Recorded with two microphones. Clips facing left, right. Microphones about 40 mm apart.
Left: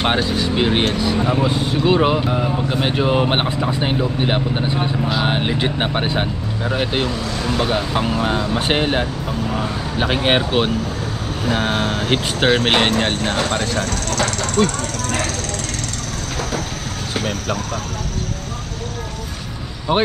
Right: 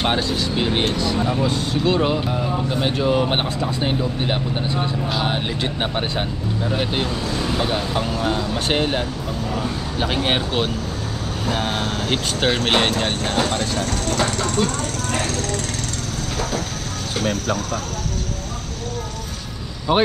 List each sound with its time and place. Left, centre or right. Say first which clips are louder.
0.0 s speech: left 2 dB; centre
14.6 s speech: left 5 dB; centre
19.9 s speech: even; centre